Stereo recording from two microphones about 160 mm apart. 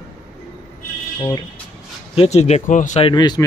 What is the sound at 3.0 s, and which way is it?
Speech, 25° left (ahead or behind).